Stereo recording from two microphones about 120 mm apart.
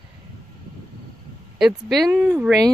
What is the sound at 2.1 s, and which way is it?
Speech, 20° right (ahead or behind).